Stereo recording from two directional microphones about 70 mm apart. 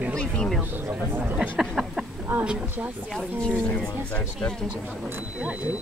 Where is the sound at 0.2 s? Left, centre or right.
Centre.